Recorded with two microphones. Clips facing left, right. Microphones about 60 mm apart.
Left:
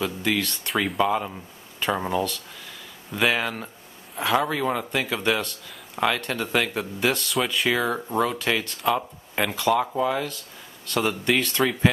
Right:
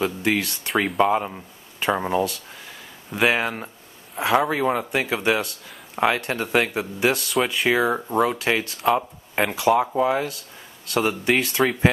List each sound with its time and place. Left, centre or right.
0.0 s speech: right
0.5 s speech: centre
0.9 s speech: centre
3.3 s speech: right